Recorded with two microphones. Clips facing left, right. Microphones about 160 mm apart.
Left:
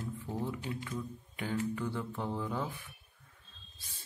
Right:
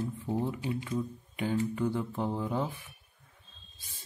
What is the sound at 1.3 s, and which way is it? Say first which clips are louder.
Mantra: right 4 dB; 20° right (ahead or behind).